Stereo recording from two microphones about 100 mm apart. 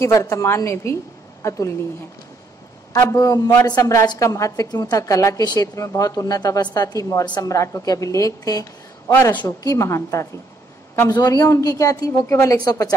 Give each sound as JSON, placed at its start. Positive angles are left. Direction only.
{"t": 0.0, "sound": "a woman's voice", "side_deg": 30}
{"t": 2.9, "sound": "a woman's voice", "side_deg": 35}
{"t": 9.1, "sound": "a woman's voice", "side_deg": 20}
{"t": 9.6, "sound": "a woman's voice", "side_deg": 35}
{"t": 11.1, "sound": "a woman's voice", "side_deg": 40}